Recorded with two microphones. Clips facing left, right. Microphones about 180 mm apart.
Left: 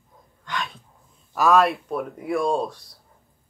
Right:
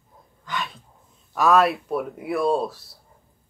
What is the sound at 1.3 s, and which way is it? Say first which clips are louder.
Speech: even; centre (ahead or behind).